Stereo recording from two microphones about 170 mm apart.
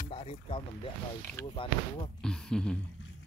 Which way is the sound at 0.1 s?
35° left (ahead or behind).